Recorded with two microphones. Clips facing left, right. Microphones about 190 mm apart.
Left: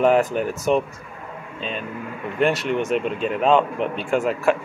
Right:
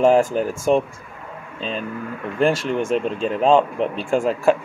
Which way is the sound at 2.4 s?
30° right (ahead or behind).